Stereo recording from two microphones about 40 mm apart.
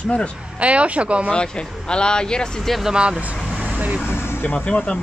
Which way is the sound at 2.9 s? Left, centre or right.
Right.